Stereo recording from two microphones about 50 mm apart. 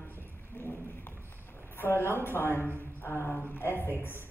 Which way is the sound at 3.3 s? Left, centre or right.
Left.